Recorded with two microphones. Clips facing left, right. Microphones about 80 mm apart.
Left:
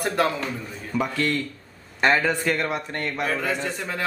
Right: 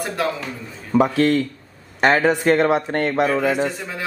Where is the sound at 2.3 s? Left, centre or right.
Right.